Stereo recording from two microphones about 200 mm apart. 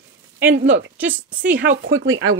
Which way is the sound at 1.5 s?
60° right (ahead or behind).